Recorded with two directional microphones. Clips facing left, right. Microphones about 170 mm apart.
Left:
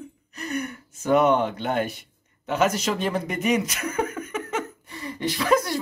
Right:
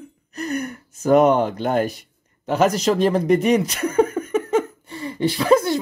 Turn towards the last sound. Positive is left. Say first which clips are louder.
# right 5 dB
turn(degrees=-30)  # may be behind; listen again after turning